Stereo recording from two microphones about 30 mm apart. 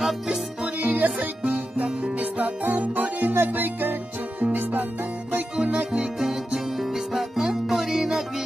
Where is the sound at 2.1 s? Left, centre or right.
Right.